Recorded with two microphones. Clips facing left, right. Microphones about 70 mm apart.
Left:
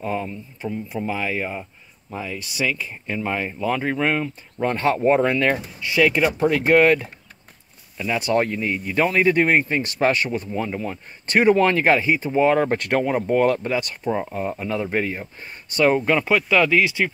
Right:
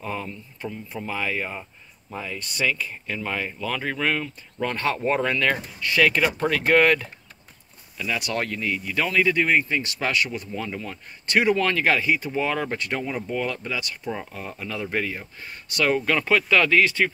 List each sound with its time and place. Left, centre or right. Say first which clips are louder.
0.0 s speech: left 5 dB; centre
12.7 s speech: left 7 dB; left
14.3 s speech: left 8 dB; left; by 17.1 s centre